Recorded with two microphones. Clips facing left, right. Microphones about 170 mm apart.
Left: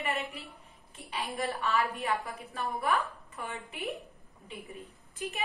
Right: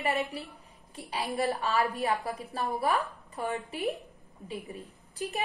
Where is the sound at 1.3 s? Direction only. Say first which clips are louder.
Right 3 dB; 40° right (ahead or behind).